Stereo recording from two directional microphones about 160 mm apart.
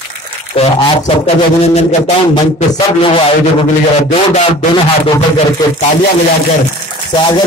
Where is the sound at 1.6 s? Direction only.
40° left (ahead or behind).